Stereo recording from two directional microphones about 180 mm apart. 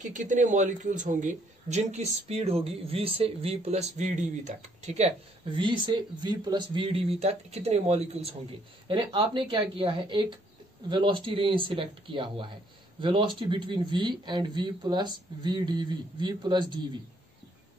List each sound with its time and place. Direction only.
0.0 s speech: 45° right (ahead or behind)
5.6 s speech: 25° right (ahead or behind)